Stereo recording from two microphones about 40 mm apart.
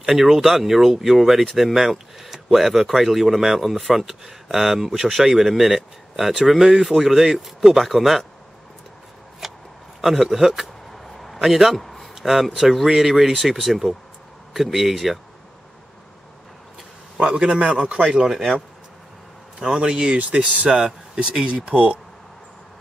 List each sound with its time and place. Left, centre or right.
0.0 s speech: centre
9.4 s a sound: centre
11.4 s speech: centre
11.7 s a sound: centre
12.2 s speech: centre
17.3 s speech: right
18.1 s speech: centre
19.6 s speech: right